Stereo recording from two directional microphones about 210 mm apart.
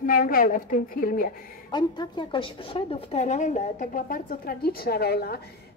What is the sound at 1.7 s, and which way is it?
A woman's voice, 20° left (ahead or behind).